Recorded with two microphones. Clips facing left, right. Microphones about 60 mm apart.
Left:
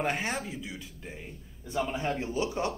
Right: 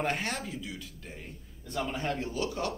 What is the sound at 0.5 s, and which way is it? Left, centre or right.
Speech, centre.